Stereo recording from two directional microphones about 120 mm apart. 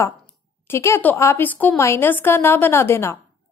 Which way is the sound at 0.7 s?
20° left (ahead or behind).